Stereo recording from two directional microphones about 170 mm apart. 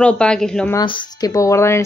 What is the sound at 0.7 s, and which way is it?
A woman's voice, 25° left (ahead or behind).